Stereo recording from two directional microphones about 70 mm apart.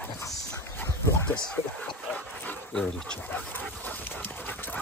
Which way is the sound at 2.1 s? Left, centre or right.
Left.